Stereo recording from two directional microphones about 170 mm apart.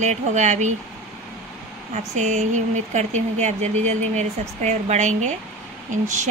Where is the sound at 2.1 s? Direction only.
45° right (ahead or behind).